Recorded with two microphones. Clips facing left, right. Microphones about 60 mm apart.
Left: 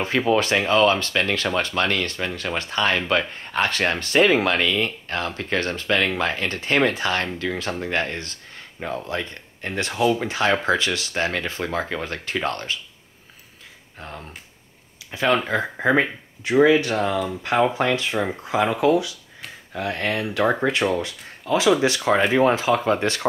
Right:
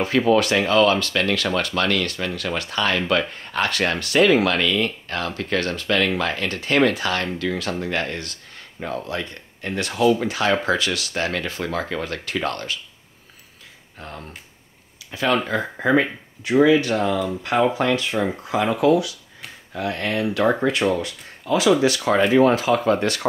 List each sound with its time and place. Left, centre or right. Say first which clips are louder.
0.3 s speech: right 1 dB; left
14.0 s speech: right 1 dB; centre
15.0 s speech: left 1 dB; left
15.3 s speech: right 1 dB; centre
16.6 s speech: right 1 dB; left